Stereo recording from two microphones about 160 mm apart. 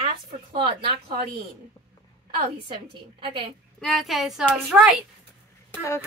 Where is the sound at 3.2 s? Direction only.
30° right (ahead or behind).